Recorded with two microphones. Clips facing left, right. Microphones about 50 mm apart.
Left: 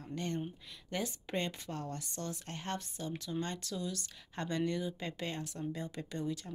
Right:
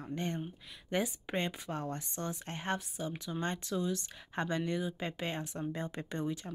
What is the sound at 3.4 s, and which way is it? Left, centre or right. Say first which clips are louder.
Speech: right 6 dB; right.